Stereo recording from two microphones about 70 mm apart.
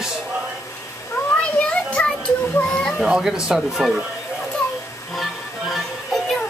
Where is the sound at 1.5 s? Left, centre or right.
Centre.